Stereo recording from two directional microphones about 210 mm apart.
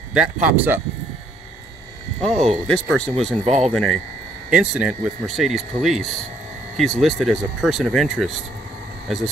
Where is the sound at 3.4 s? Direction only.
30° right (ahead or behind).